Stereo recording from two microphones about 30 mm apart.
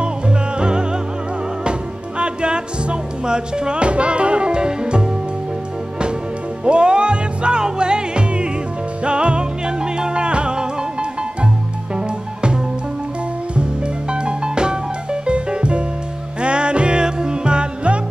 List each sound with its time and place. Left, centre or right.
0.0 s music: right
6.6 s music: right
14.1 s music: right